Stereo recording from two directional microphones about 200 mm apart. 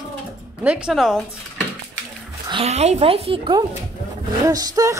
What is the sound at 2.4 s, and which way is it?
Speech, 30° right (ahead or behind).